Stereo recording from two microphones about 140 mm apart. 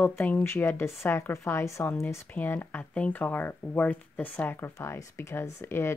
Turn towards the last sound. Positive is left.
turn(degrees=15)  # may be behind; listen again after turning